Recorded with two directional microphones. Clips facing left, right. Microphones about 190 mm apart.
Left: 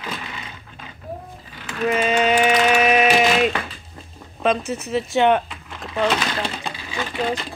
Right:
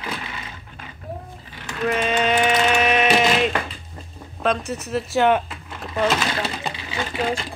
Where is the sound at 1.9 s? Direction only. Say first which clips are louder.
Left 2 dB; 5° left (ahead or behind).